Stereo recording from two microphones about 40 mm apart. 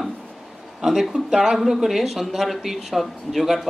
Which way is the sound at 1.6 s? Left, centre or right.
Centre.